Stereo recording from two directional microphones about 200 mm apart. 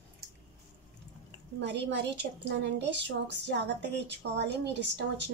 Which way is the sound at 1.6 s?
60° right (ahead or behind).